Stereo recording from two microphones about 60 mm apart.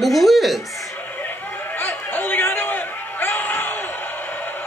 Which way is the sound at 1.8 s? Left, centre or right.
Left.